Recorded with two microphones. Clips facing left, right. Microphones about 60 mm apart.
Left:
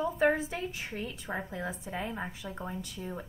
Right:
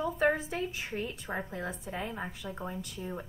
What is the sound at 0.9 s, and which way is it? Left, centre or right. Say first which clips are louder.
Speech: right 2 dB; right.